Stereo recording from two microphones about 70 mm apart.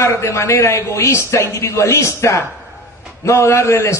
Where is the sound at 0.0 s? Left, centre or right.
Left.